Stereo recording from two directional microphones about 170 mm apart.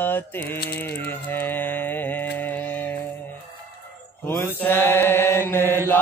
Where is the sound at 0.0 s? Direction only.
10° left (ahead or behind).